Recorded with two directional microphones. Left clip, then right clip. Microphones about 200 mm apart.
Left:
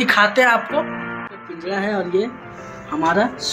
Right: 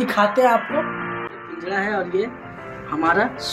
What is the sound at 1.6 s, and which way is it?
Speech, 30° left (ahead or behind).